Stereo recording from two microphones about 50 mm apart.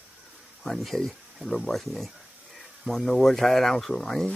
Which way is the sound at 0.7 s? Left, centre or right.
Centre.